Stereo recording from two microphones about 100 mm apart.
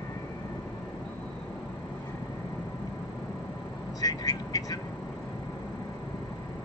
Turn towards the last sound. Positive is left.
turn(degrees=35)  # may be behind; listen again after turning